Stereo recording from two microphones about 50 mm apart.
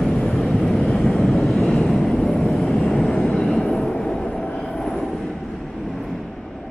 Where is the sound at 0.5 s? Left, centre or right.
Centre.